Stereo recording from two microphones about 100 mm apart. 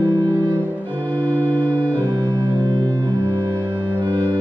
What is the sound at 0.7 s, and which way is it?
Music, 15° right (ahead or behind).